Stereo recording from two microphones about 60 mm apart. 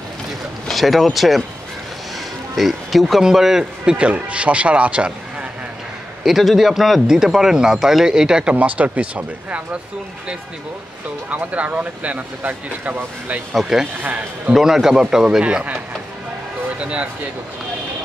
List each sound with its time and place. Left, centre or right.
0.7 s speech: centre
2.5 s a man's voice: centre
6.2 s a man's voice: centre
8.5 s speech: right
11.2 s speech: right
13.6 s a man's voice: centre
16.8 s speech: centre